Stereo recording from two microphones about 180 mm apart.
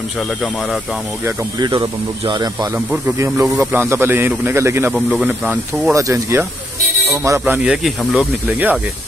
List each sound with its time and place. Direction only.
1.2 s speech: 25° right (ahead or behind); by 5.9 s 5° right (ahead or behind)
5.9 s speech: 20° right (ahead or behind)